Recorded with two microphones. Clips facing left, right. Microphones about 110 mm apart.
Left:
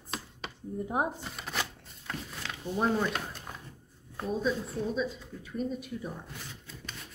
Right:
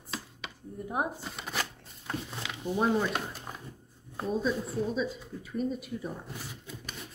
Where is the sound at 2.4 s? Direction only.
10° right (ahead or behind).